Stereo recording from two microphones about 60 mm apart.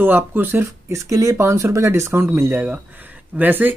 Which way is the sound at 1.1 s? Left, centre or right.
Right.